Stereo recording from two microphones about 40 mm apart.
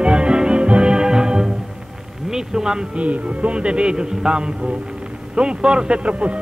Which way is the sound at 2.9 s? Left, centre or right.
Right.